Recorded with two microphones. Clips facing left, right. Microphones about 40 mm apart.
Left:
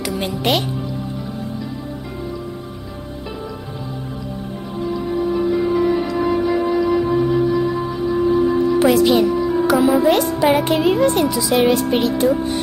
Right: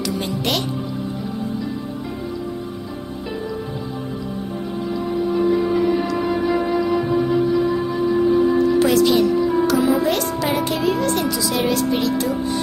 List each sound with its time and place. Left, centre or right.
0.0 s a child's voice: left
8.7 s a child's voice: centre
10.5 s a child's voice: left